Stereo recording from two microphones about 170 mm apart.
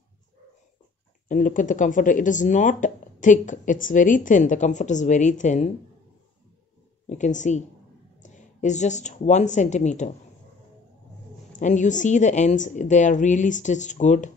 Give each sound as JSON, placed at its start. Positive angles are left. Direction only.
{"t": 1.3, "sound": "speech", "side_deg": 50}
{"t": 7.1, "sound": "speech", "side_deg": 45}
{"t": 11.6, "sound": "speech", "side_deg": 45}